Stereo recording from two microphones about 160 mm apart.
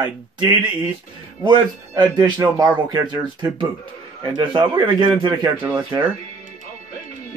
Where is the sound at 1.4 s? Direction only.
25° right (ahead or behind).